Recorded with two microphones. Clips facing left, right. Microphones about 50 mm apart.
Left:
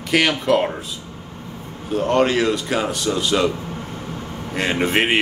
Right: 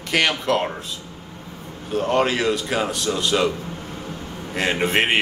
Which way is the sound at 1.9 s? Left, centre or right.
Centre.